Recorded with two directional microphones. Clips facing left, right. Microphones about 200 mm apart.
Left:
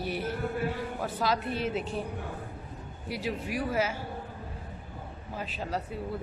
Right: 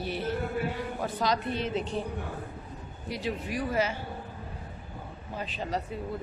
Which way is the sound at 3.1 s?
5° left (ahead or behind).